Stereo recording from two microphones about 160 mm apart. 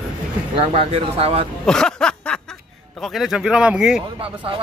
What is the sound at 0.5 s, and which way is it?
Speech, 35° right (ahead or behind).